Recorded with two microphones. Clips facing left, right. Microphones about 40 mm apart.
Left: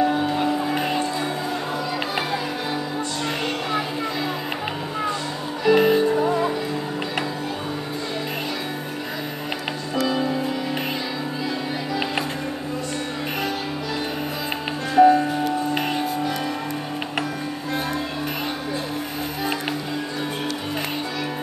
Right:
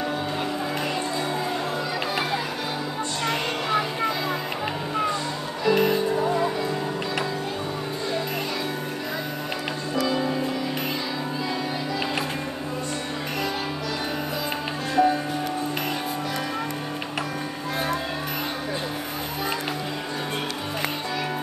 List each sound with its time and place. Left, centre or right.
0.0 s music: centre
5.7 s music: left
15.0 s music: centre